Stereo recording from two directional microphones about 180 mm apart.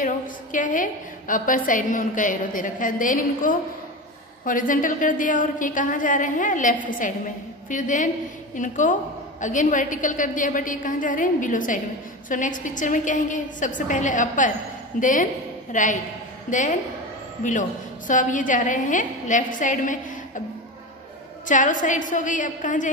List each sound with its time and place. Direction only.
0.0 s a woman's voice: 45° left (ahead or behind)
21.5 s a woman's voice: 45° left (ahead or behind)